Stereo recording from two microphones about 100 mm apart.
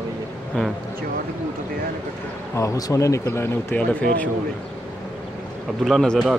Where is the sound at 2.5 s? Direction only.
30° left (ahead or behind).